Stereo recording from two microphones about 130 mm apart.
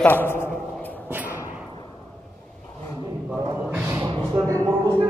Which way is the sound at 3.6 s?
15° right (ahead or behind).